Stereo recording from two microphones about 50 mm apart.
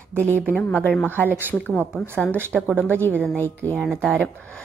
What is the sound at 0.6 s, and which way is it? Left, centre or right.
A woman's voice, left.